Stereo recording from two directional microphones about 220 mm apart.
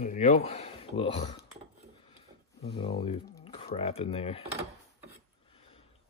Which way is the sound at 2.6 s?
25° left (ahead or behind).